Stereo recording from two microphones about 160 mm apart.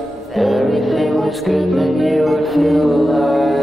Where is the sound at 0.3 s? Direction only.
Centre (ahead or behind).